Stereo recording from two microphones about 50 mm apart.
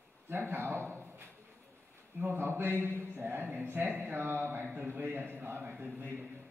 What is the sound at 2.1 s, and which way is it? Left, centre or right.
Speech, right.